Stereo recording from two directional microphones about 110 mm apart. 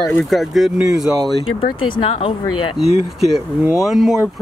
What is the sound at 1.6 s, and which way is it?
Speech, 50° left (ahead or behind).